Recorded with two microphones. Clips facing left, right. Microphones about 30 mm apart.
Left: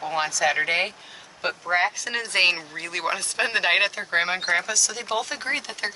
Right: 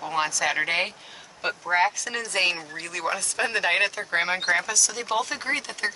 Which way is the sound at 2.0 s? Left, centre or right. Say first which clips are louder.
Left 3 dB; left.